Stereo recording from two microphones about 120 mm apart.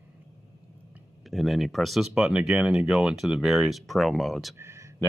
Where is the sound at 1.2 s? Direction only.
Centre (ahead or behind).